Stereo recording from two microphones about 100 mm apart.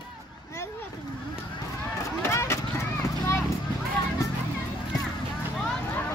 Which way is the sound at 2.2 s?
30° left (ahead or behind).